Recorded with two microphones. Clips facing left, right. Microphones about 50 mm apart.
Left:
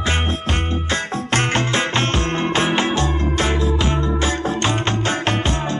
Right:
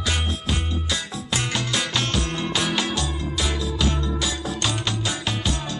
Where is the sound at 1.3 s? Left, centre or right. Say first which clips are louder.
Left 6 dB; left.